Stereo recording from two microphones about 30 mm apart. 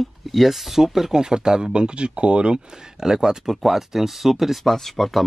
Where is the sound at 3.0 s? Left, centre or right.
Centre.